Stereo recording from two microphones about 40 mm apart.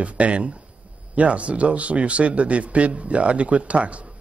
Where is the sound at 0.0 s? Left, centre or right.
Right.